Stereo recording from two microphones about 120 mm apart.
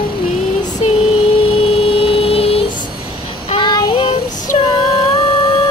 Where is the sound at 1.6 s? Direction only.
50° left (ahead or behind).